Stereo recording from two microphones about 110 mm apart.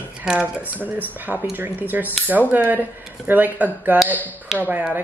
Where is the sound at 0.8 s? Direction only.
15° right (ahead or behind).